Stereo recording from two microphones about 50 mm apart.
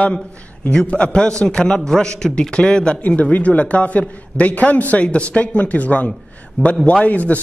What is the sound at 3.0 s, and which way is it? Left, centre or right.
A man's voice, left.